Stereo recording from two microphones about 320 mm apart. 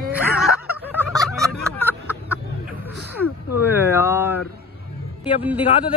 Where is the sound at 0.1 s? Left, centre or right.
Centre.